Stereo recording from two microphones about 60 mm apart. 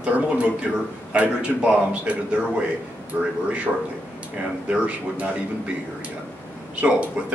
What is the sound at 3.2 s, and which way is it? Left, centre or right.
Speech, centre.